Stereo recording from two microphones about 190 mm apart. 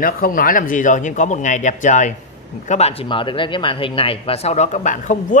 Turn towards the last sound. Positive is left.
turn(degrees=40)  # may be behind; listen again after turning